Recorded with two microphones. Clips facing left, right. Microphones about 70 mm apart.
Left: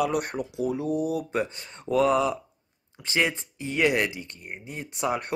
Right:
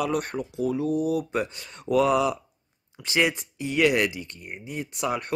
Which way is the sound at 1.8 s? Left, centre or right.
Left.